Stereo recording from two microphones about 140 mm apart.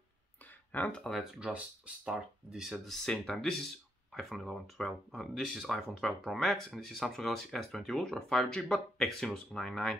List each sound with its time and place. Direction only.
0.7 s speech: 10° left (ahead or behind)